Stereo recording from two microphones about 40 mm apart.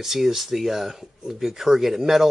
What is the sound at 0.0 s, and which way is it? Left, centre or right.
Speech, centre.